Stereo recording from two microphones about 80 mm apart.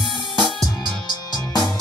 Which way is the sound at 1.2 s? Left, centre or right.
Left.